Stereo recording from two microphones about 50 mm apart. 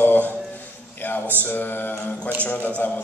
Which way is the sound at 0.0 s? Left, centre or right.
Left.